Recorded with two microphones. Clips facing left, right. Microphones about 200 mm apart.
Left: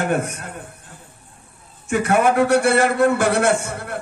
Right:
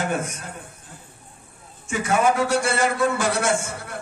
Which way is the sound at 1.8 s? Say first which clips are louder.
Left 3 dB; 60° left (ahead or behind).